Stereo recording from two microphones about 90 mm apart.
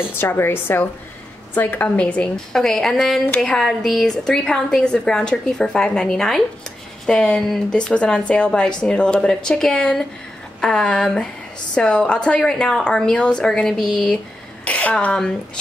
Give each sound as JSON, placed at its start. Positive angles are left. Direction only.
{"t": 0.2, "sound": "a woman's voice", "side_deg": 25}